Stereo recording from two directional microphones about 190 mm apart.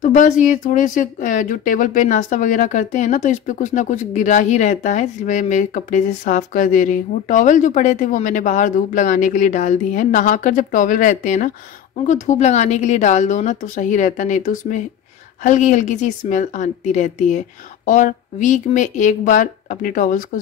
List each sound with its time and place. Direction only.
0.0 s speech: 40° left (ahead or behind)